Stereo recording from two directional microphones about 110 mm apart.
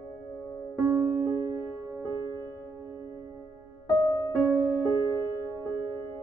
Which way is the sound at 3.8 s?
40° left (ahead or behind).